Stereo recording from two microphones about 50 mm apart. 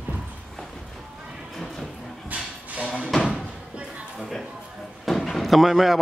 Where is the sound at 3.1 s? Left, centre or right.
Centre.